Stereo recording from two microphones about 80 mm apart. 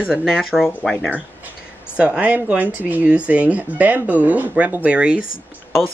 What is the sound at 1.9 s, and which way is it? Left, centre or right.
Speech, centre.